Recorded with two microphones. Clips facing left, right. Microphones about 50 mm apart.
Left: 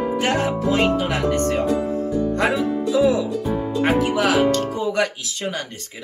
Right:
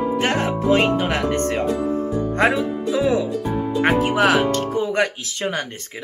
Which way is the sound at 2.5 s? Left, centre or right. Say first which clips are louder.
Left 1 dB; right.